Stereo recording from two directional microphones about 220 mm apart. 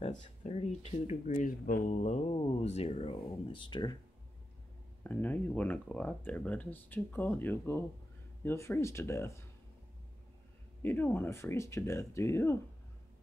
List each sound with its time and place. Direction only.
0.0 s speech: 30° left (ahead or behind)
5.0 s speech: 10° left (ahead or behind)
10.8 s speech: 10° left (ahead or behind)